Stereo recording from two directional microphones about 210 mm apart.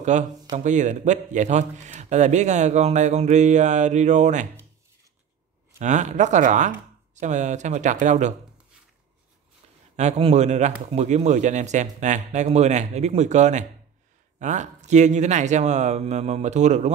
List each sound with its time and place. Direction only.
0.1 s a man's voice: 35° right (ahead or behind)
5.8 s a man's voice: 35° right (ahead or behind)
9.9 s a man's voice: 30° right (ahead or behind)